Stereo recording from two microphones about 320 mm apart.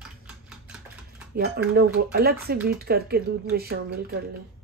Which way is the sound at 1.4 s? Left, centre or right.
Right.